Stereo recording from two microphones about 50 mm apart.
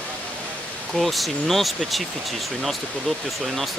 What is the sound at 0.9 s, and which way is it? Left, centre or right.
Speech, centre.